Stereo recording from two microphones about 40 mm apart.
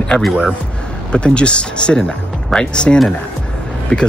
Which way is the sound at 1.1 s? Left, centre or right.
Left.